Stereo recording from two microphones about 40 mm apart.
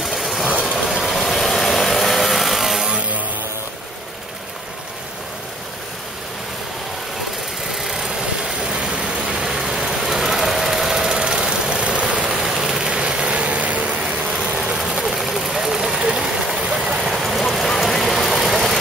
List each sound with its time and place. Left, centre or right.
0.0 s vehicle: centre
1.2 s power tool: centre
7.8 s vehicle: centre
9.6 s engine: centre; by 12.3 s right
12.3 s vehicle: centre
13.0 s vehicle: right
14.3 s vehicle: right
14.8 s a sound: centre
15.1 s vehicle: centre
17.0 s vehicle: centre
17.4 s rain: centre
17.7 s vehicle: centre